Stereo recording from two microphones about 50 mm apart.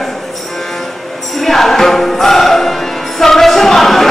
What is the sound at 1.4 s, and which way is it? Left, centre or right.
Music, centre.